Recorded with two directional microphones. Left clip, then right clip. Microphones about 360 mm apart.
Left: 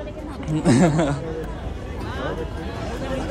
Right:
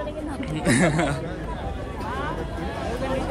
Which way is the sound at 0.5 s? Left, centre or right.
Centre.